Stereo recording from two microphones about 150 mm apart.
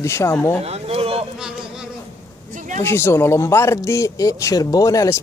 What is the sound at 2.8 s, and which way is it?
Speech, 15° left (ahead or behind).